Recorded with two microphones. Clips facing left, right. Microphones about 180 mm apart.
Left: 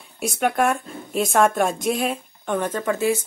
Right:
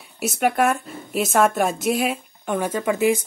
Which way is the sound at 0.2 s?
5° right (ahead or behind).